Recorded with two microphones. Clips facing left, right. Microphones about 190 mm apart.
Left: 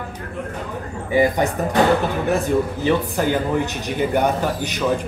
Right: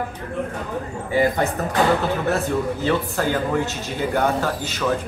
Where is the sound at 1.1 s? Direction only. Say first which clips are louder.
Left 2 dB; 15° left (ahead or behind).